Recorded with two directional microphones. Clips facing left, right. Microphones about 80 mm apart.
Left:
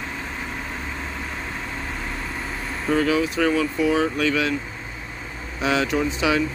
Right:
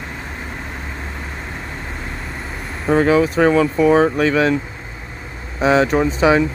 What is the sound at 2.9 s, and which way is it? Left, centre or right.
Speech, right.